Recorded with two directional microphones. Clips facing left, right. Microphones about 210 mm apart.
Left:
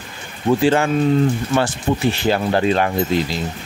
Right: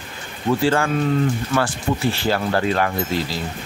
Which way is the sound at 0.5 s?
20° left (ahead or behind).